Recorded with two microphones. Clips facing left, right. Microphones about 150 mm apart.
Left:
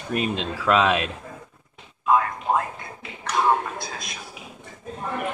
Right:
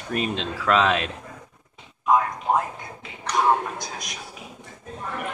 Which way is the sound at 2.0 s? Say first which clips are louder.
Even; 15° right (ahead or behind).